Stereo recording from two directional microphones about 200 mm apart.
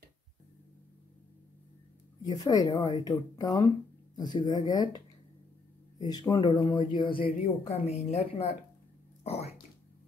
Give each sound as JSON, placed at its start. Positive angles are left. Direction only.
{"t": 2.2, "sound": "speech", "side_deg": 20}
{"t": 6.0, "sound": "speech", "side_deg": 20}
{"t": 9.2, "sound": "a sound", "side_deg": 30}